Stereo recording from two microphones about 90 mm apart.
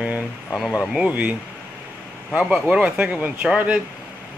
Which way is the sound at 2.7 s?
15° right (ahead or behind).